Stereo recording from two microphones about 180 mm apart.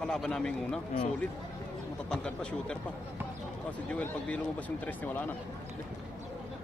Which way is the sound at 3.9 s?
10° left (ahead or behind).